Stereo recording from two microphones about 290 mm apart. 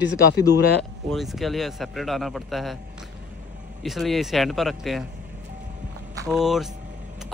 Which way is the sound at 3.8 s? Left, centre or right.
Centre.